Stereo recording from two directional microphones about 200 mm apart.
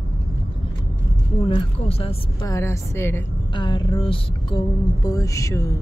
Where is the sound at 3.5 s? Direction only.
25° left (ahead or behind).